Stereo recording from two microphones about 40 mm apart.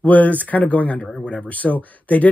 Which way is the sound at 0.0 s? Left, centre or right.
Left.